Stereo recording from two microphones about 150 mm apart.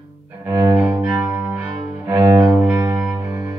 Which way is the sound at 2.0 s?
25° right (ahead or behind).